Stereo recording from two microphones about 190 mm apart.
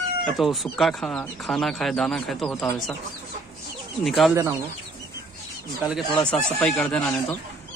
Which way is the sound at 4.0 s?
Centre (ahead or behind).